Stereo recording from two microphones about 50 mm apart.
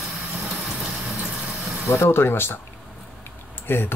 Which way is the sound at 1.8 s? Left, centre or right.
Left.